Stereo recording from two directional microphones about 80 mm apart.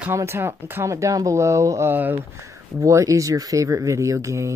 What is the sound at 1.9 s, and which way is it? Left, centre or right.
Speech, right.